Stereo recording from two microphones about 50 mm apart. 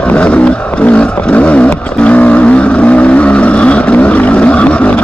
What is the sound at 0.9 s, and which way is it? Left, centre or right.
Vehicle, left.